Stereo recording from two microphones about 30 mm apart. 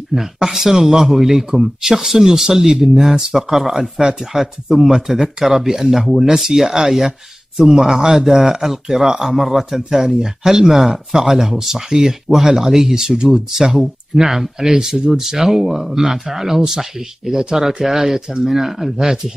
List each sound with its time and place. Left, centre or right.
0.1 s speech: centre
3.1 s speech: right
4.0 s speech: right
4.4 s speech: centre